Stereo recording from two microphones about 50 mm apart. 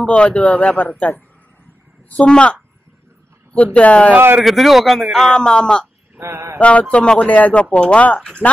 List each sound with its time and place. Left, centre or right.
0.0 s a man's voice: left
4.5 s a man's voice: centre
5.3 s speech: centre
6.1 s mantra: right
6.6 s a man's voice: left